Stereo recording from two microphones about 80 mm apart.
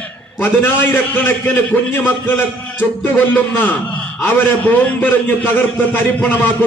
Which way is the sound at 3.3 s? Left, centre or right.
Left.